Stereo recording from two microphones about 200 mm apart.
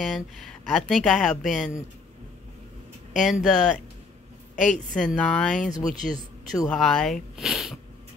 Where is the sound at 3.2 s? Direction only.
Centre (ahead or behind).